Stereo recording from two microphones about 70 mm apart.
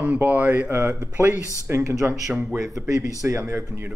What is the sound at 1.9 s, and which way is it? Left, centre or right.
Speech, right.